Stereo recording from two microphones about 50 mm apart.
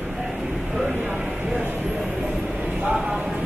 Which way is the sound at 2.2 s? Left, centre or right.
Right.